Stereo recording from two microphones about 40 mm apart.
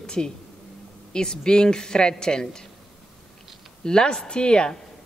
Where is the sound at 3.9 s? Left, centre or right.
Centre.